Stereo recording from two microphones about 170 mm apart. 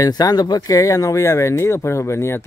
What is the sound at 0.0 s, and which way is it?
Speech, 20° left (ahead or behind).